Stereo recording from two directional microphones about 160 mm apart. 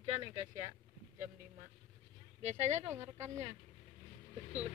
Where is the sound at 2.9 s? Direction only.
15° right (ahead or behind).